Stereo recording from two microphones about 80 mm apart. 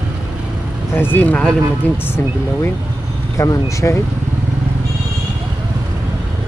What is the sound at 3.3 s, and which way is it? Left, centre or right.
Speech, left.